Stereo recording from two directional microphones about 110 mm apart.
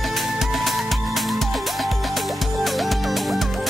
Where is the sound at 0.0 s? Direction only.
Centre (ahead or behind).